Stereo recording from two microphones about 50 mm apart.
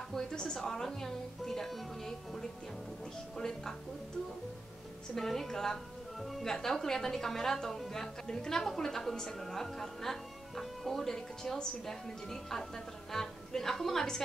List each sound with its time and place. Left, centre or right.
0.1 s speech: centre
5.1 s speech: centre